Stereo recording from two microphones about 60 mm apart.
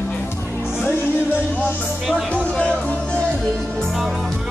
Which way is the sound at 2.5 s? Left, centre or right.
Left.